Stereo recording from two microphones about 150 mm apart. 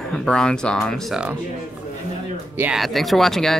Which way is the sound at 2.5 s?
10° right (ahead or behind).